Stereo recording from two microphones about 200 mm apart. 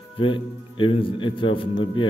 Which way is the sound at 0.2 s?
25° left (ahead or behind).